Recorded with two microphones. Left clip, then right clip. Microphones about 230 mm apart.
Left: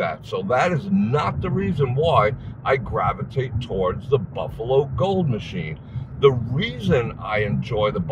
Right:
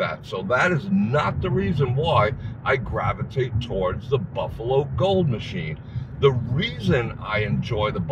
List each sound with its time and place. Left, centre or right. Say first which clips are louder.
0.0 s a man's voice: left 2 dB; left
4.6 s a man's voice: left 2 dB; centre